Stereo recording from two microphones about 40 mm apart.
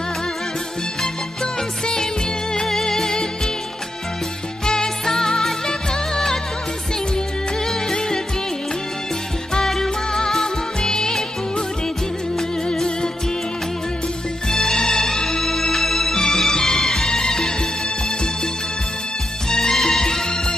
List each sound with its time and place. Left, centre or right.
1.0 s music: centre
4.6 s music: centre
7.6 s music: centre
9.8 s music: centre
12.7 s music: centre
14.5 s music: centre
19.5 s music: centre